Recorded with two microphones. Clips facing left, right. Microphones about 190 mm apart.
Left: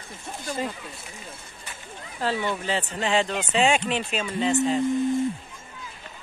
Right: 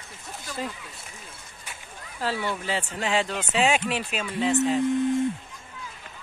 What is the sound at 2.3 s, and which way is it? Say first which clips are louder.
Speech: left 2 dB; 20° left (ahead or behind).